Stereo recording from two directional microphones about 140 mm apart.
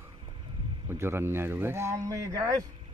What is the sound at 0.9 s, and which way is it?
Speech, 15° right (ahead or behind).